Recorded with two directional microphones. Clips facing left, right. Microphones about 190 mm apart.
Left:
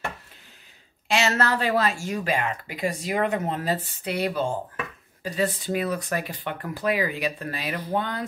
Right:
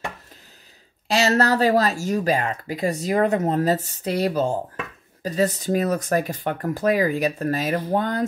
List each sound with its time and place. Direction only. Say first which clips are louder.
1.0 s speech: right 4 dB; 40° right (ahead or behind)